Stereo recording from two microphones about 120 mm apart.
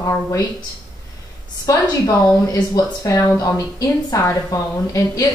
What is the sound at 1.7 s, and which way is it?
Speech, 30° left (ahead or behind).